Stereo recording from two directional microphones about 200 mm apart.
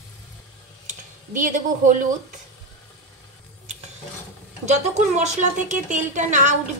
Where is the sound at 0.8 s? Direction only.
40° right (ahead or behind).